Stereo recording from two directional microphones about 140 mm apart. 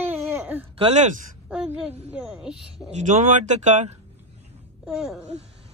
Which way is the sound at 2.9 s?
55° right (ahead or behind).